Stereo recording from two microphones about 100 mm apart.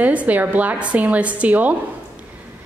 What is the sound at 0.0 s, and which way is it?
A woman's voice, 15° right (ahead or behind).